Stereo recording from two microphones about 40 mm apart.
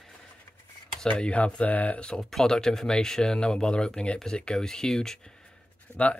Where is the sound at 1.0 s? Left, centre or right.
Left.